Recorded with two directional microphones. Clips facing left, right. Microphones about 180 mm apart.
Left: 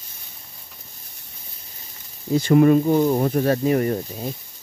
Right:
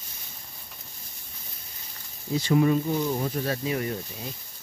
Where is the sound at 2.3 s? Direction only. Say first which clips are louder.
Left 7 dB; 50° left (ahead or behind).